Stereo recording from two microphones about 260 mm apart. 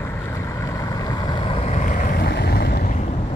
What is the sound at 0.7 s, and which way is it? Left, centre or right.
Vehicle, centre.